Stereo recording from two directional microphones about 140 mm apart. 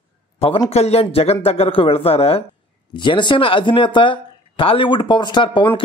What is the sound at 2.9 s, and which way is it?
Speech, 35° left (ahead or behind).